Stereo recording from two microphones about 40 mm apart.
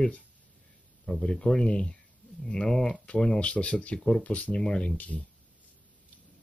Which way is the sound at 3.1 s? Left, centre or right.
Left.